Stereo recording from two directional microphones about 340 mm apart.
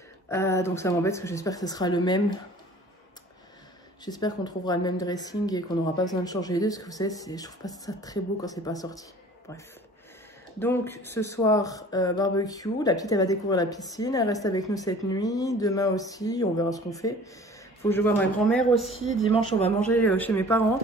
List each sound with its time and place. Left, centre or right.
0.3 s speech: centre
4.0 s speech: centre
10.6 s speech: centre
19.2 s speech: centre
19.9 s speech: centre